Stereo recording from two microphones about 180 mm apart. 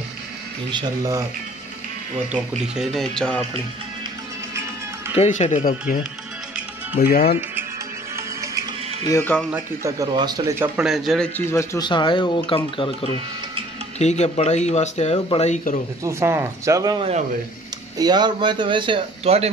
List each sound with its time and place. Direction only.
0.7 s speech: 25° right (ahead or behind)
2.3 s speech: 5° right (ahead or behind)
5.1 s speech: 40° left (ahead or behind)
7.0 s speech: 55° left (ahead or behind)
8.2 s music: 15° right (ahead or behind)
9.0 s speech: 15° left (ahead or behind)
9.5 s speech: 15° right (ahead or behind)
10.9 s speech: centre (ahead or behind)
11.3 s speech: 15° left (ahead or behind); by 15.8 s 45° left (ahead or behind)
16.0 s speech: 15° right (ahead or behind); by 19.5 s 35° right (ahead or behind)